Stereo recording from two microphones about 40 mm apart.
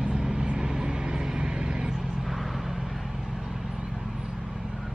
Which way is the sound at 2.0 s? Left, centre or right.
Centre.